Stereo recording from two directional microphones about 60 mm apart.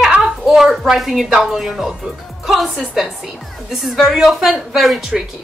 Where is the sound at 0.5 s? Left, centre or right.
Centre.